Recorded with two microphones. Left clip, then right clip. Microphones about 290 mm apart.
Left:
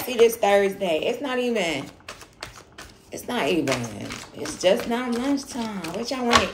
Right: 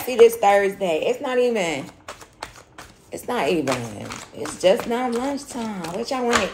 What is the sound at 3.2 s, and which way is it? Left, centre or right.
Speech, centre.